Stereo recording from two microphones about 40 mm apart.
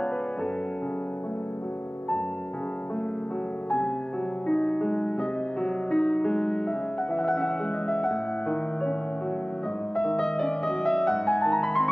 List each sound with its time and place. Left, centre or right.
4.5 s music: centre
9.9 s music: centre